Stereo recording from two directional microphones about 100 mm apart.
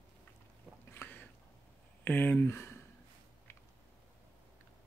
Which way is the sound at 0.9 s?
20° left (ahead or behind).